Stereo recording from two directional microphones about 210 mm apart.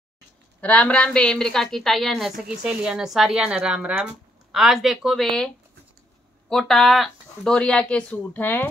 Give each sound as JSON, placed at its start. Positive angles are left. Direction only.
{"t": 0.6, "sound": "speech", "side_deg": 5}
{"t": 6.5, "sound": "speech", "side_deg": 0}